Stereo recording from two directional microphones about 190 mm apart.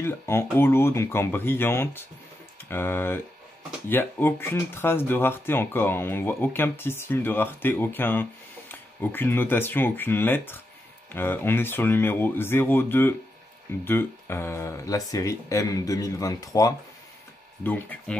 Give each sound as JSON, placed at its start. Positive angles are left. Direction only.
{"t": 0.0, "sound": "speech", "side_deg": 15}